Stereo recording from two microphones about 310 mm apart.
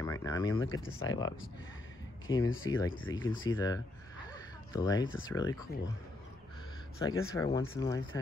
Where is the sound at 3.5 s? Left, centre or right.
Centre.